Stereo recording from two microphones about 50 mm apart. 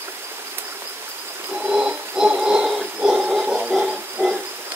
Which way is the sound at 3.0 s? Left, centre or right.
Right.